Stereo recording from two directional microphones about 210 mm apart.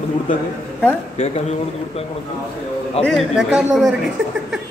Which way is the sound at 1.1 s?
30° left (ahead or behind).